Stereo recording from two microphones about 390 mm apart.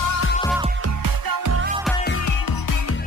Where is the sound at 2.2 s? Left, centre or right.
Left.